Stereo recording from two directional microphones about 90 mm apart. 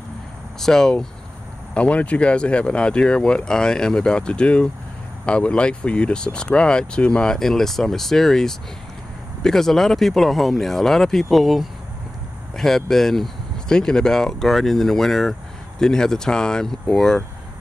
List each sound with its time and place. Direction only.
0.6 s speech: 5° left (ahead or behind)